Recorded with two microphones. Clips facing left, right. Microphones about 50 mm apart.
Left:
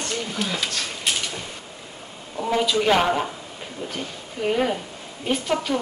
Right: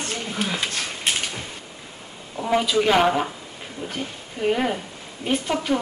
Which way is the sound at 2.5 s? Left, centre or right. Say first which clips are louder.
Right 1 dB; centre.